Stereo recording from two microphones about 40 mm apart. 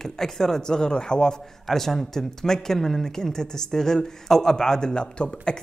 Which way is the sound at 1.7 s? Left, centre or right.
Centre.